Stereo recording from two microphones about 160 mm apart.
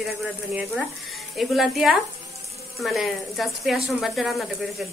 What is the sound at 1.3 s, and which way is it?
Speech, centre (ahead or behind).